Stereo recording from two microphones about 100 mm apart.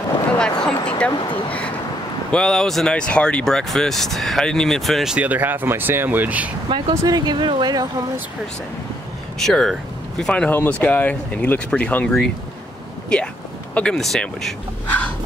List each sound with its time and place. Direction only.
0.4 s a sound: 10° left (ahead or behind)
0.8 s speech: 10° left (ahead or behind)
2.3 s speech: 5° left (ahead or behind)
5.1 s speech: 15° right (ahead or behind)
6.9 s speech: 35° right (ahead or behind)
9.4 s speech: 5° left (ahead or behind)